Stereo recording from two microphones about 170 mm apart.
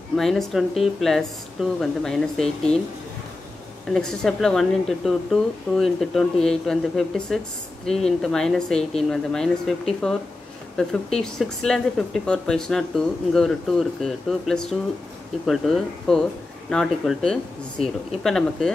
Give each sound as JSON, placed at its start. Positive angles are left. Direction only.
{"t": 0.1, "sound": "speech", "side_deg": 0}
{"t": 3.9, "sound": "speech", "side_deg": 5}